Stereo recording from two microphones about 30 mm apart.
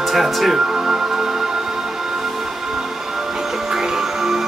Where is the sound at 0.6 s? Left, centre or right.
Centre.